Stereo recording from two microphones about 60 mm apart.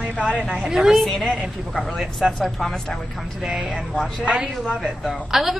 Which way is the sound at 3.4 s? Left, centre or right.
Centre.